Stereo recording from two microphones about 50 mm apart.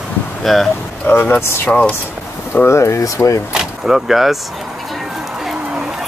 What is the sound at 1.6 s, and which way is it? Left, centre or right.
Speech, left.